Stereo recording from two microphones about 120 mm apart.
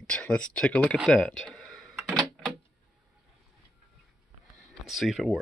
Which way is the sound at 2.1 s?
5° left (ahead or behind).